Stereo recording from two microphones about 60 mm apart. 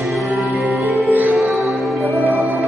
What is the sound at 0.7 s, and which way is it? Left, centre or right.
Music, right.